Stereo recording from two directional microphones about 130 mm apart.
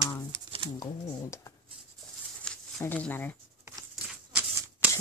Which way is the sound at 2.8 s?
15° left (ahead or behind).